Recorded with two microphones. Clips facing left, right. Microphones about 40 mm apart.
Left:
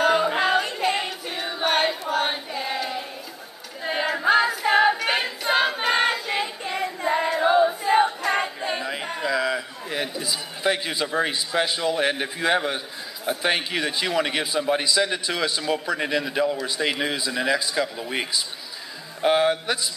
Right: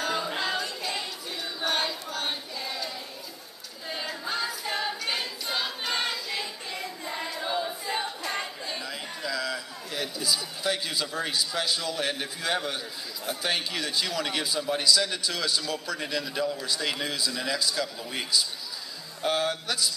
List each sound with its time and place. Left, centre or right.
0.0 s yodeling: left
0.4 s a sound: left
3.8 s choir: left
16.6 s a man's voice: left